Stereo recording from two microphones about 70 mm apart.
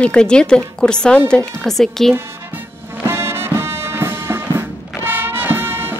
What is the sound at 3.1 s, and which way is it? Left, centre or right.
Music, right.